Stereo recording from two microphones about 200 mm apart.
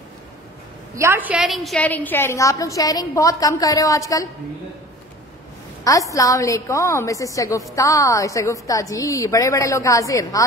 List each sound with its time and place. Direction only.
0.9 s a woman's voice: 10° right (ahead or behind); by 4.3 s 15° left (ahead or behind)
6.1 s a woman's voice: 15° left (ahead or behind)